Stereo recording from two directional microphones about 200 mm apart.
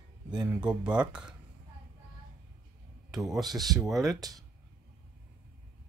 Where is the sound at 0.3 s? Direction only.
5° right (ahead or behind).